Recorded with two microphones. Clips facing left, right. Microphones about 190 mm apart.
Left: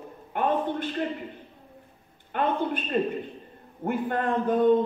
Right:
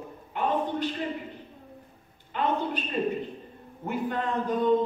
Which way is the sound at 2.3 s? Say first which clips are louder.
Left 2 dB; 55° left (ahead or behind).